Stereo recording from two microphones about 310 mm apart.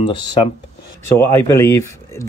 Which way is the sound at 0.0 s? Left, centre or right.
Centre.